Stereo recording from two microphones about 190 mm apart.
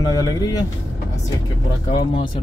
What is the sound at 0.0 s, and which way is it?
Speech, 20° left (ahead or behind).